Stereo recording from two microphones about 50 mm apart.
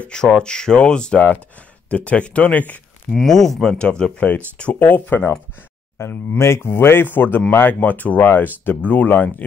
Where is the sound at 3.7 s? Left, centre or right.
Centre.